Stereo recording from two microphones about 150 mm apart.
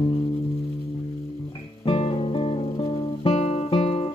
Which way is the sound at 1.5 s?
40° left (ahead or behind).